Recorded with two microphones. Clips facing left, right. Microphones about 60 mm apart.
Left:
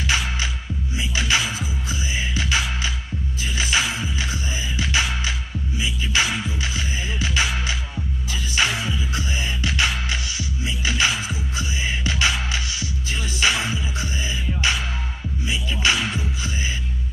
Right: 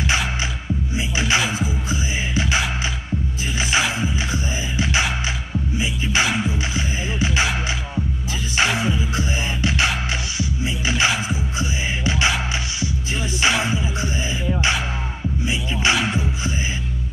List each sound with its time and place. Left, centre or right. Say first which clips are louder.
0.9 s music: right 1 dB; right
8.5 s music: right 3 dB; right
15.4 s music: right 1 dB; right